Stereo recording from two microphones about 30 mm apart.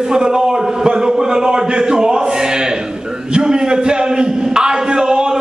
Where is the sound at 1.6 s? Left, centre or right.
Right.